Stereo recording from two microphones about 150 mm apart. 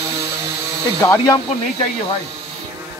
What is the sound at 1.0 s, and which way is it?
Speech, 20° left (ahead or behind).